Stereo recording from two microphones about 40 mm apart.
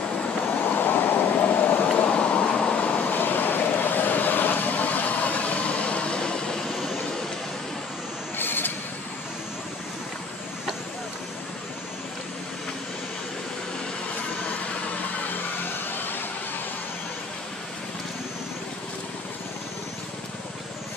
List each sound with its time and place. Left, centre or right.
0.7 s vehicle: left
1.9 s vehicle: left
3.2 s vehicle: left; by 6.6 s centre
6.7 s vehicle: centre
8.4 s mechanisms: left
15.6 s a sound: left